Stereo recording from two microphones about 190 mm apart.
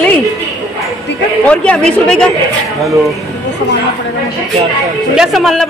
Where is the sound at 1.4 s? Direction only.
5° left (ahead or behind).